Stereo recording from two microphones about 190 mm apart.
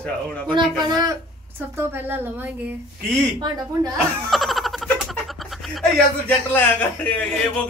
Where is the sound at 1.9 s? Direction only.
10° right (ahead or behind).